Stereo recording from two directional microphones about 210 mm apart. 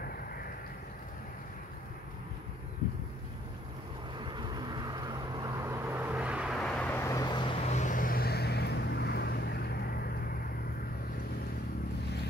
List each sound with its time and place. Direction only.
4.2 s vehicle: 20° right (ahead or behind); by 10.1 s 50° left (ahead or behind)